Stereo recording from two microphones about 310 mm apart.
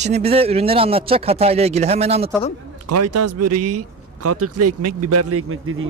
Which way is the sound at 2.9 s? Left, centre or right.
Right.